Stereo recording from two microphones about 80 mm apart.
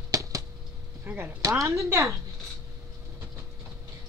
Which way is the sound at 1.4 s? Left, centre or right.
Right.